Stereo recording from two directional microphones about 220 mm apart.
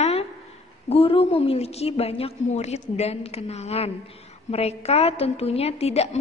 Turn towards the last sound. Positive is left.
turn(degrees=30)  # may be behind; listen again after turning